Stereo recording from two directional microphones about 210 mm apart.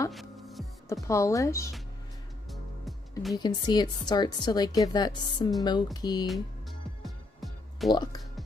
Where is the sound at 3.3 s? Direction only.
20° left (ahead or behind).